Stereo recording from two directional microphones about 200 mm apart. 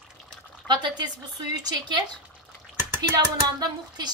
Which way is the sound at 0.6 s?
20° right (ahead or behind).